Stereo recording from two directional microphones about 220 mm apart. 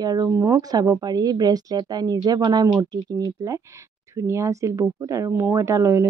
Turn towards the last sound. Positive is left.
turn(degrees=-15)  # may be behind; listen again after turning